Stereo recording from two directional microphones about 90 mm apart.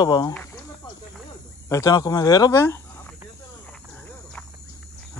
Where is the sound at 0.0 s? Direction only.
45° left (ahead or behind).